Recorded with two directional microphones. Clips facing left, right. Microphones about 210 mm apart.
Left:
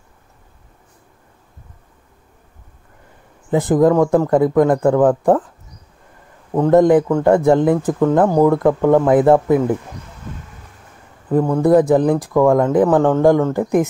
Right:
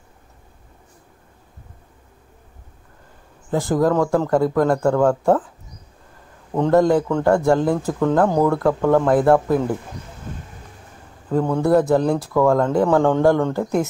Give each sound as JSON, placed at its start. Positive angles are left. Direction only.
{"t": 3.4, "sound": "speech", "side_deg": 20}
{"t": 6.5, "sound": "speech", "side_deg": 15}
{"t": 11.2, "sound": "speech", "side_deg": 10}
{"t": 11.9, "sound": "speech", "side_deg": 15}
{"t": 13.2, "sound": "speech", "side_deg": 15}